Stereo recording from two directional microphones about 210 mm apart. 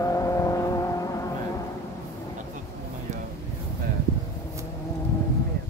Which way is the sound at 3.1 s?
35° right (ahead or behind).